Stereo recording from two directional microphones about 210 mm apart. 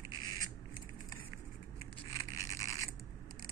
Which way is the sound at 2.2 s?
15° left (ahead or behind).